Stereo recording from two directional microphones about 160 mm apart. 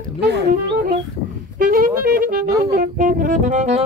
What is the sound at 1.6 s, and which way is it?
Music, 65° right (ahead or behind).